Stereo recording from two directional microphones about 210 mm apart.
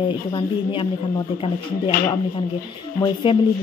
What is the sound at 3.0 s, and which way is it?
Speech, 25° left (ahead or behind).